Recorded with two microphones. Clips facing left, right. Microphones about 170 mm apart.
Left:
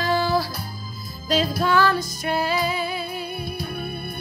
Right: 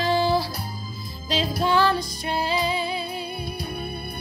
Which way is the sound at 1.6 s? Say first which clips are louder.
Right 2 dB; 25° right (ahead or behind).